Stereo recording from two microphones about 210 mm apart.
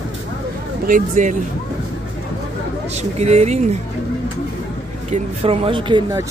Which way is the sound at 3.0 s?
30° right (ahead or behind).